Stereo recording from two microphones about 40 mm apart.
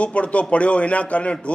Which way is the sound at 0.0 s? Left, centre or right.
Left.